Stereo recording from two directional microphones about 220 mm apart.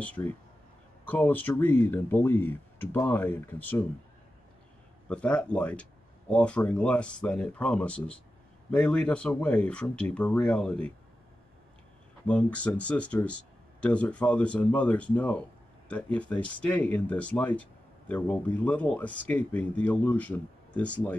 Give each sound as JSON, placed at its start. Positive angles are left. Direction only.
{"t": 0.0, "sound": "speech", "side_deg": 5}
{"t": 5.1, "sound": "speech", "side_deg": 5}
{"t": 12.3, "sound": "speech", "side_deg": 5}